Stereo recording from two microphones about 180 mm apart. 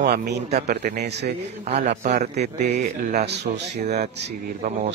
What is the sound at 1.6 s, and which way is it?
A man's voice, 40° right (ahead or behind).